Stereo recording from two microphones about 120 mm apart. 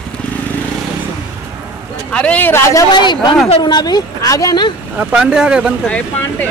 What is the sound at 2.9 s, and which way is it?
Speech, 40° left (ahead or behind).